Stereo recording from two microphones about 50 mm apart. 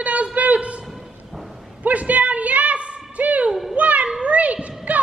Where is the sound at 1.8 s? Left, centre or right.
Right.